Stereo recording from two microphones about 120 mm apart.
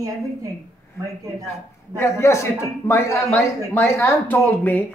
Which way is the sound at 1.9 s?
25° left (ahead or behind).